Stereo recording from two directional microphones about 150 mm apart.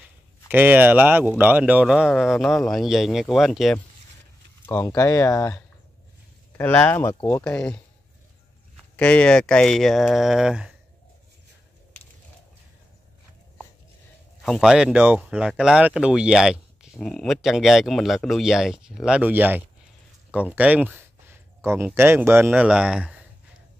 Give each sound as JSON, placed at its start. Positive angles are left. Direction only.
{"t": 0.5, "sound": "a man's voice", "side_deg": -10}
{"t": 4.7, "sound": "speech", "side_deg": 20}
{"t": 7.4, "sound": "speech", "side_deg": 5}
{"t": 8.9, "sound": "speech", "side_deg": 10}
{"t": 14.4, "sound": "speech", "side_deg": 0}
{"t": 17.0, "sound": "speech", "side_deg": 5}
{"t": 20.2, "sound": "a sound", "side_deg": -10}
{"t": 21.6, "sound": "a man's voice", "side_deg": -15}